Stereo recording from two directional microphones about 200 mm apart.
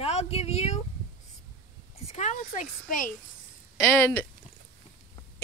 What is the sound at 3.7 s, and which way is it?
Speech, 10° left (ahead or behind).